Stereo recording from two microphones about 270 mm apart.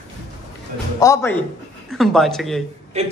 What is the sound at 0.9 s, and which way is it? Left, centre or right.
A man's voice, centre.